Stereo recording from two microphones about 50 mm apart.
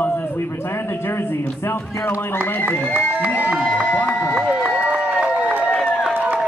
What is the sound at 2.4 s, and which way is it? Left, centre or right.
Speech, left.